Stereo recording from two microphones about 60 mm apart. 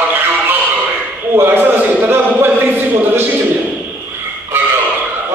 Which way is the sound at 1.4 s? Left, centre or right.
Right.